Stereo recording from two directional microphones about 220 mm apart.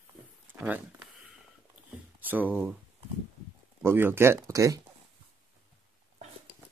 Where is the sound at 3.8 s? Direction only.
10° right (ahead or behind).